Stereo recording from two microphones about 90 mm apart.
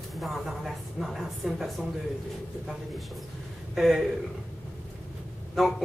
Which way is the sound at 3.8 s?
Centre (ahead or behind).